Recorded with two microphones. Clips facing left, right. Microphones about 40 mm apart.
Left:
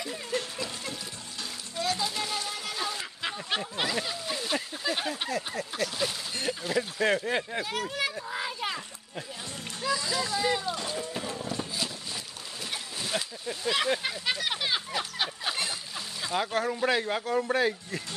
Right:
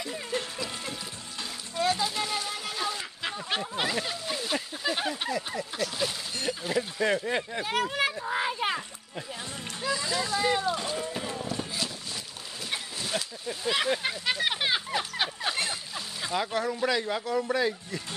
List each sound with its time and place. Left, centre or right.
0.0 s music: centre
2.0 s a sound: centre
5.8 s speech: centre
7.6 s speech: right
8.3 s a sound: right
9.8 s speech: centre
11.1 s a sound: centre
13.0 s speech: centre
15.0 s splash: centre
16.6 s speech: left